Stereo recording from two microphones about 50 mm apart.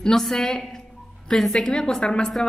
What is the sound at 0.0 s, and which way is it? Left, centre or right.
A woman's voice, centre.